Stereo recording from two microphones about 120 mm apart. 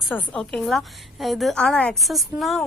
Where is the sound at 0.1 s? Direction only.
10° left (ahead or behind).